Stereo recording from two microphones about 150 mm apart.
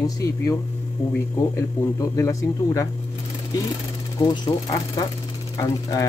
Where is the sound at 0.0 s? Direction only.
20° left (ahead or behind).